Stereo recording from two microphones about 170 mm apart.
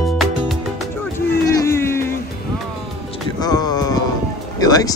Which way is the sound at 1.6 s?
15° left (ahead or behind).